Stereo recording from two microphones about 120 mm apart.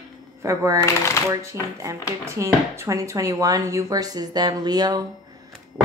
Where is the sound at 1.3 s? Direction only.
25° right (ahead or behind).